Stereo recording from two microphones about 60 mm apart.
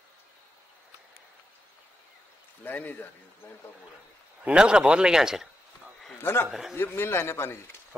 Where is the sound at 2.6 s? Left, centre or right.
Left.